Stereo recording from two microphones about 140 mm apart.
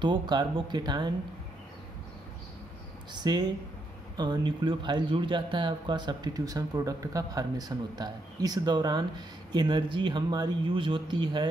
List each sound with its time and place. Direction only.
0.0 s speech: 35° right (ahead or behind)
3.1 s speech: 30° right (ahead or behind)